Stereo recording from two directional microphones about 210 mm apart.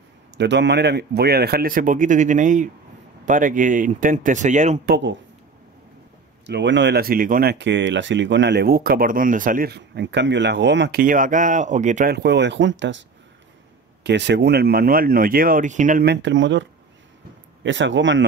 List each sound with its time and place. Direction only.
0.4 s speech: 55° right (ahead or behind); by 4.9 s 35° right (ahead or behind)
6.4 s speech: 55° right (ahead or behind); by 12.1 s 35° right (ahead or behind)
12.1 s speech: 55° right (ahead or behind)
14.0 s speech: 55° right (ahead or behind); by 16.1 s 35° right (ahead or behind)
16.1 s speech: 60° right (ahead or behind)
17.6 s speech: 60° right (ahead or behind)